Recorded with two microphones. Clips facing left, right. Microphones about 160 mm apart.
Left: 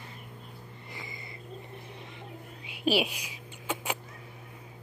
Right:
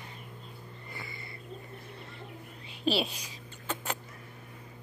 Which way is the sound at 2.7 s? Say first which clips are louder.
Left 2 dB; 10° left (ahead or behind).